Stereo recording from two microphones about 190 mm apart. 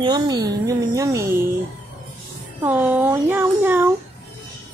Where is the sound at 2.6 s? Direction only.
5° right (ahead or behind).